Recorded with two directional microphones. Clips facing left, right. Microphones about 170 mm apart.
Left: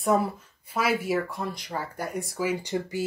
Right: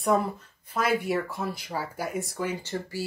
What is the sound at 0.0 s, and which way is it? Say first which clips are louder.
Speech: left 1 dB; 5° left (ahead or behind).